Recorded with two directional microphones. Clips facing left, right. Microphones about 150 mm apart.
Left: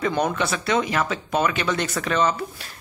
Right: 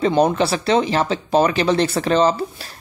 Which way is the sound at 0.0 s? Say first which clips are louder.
Right 7 dB; 30° right (ahead or behind).